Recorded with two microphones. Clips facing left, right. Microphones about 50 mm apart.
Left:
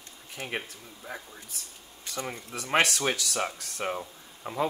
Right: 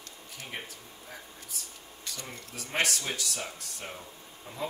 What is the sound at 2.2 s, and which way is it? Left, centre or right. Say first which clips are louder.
Speech: left 6 dB; left.